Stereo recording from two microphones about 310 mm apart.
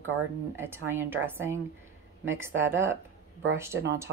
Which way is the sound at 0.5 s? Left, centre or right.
Centre.